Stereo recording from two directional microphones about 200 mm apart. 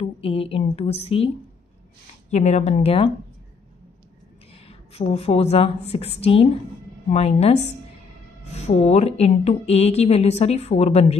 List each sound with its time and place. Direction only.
0.0 s speech: 30° left (ahead or behind)
2.3 s a woman's voice: 35° left (ahead or behind)
4.6 s a woman's voice: 30° left (ahead or behind)